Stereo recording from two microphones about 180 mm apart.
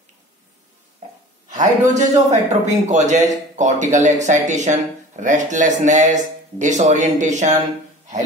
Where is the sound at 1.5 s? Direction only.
45° right (ahead or behind).